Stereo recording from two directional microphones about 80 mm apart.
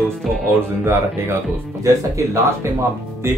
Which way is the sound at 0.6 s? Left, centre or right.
Right.